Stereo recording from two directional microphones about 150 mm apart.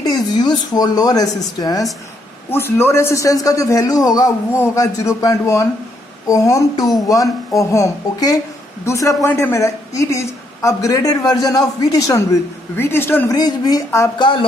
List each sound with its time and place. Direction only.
0.0 s a sound: 25° left (ahead or behind)
0.7 s a woman's voice: 25° left (ahead or behind)
13.3 s a woman's voice: 25° left (ahead or behind)
14.1 s a woman's voice: 30° left (ahead or behind)